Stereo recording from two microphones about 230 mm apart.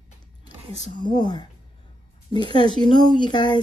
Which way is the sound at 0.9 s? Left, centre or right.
Centre.